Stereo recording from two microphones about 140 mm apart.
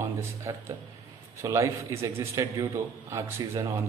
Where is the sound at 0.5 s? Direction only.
20° right (ahead or behind).